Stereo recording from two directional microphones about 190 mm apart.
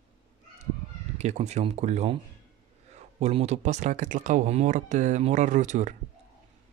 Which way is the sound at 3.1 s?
35° right (ahead or behind).